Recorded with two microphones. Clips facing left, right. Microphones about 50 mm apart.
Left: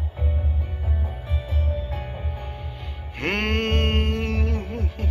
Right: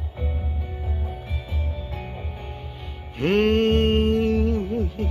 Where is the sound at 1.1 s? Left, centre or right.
Left.